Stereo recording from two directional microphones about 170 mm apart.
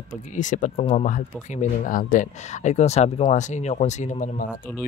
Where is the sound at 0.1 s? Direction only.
50° left (ahead or behind).